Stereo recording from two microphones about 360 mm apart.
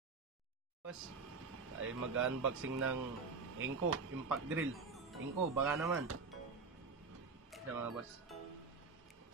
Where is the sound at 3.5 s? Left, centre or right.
Right.